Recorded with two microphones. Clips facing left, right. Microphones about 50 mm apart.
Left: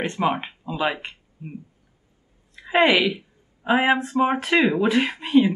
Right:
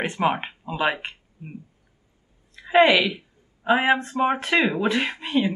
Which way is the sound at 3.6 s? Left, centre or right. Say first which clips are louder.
Even; centre.